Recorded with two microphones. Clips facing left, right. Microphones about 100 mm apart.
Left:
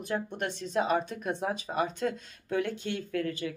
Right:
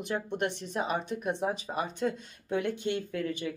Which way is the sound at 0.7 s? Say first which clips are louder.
Left 3 dB; 10° right (ahead or behind).